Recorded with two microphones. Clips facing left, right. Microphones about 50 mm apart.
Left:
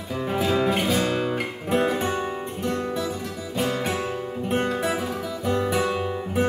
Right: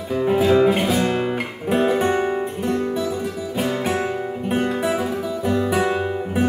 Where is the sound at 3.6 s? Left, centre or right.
Centre.